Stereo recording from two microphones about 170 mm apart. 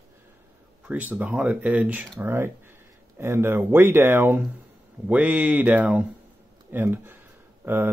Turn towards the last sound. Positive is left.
turn(degrees=-15)  # may be behind; listen again after turning